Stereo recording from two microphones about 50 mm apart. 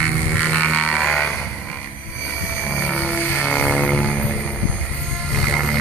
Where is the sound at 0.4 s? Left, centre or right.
Left.